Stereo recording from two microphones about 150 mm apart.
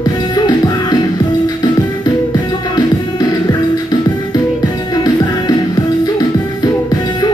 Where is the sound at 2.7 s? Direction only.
25° left (ahead or behind).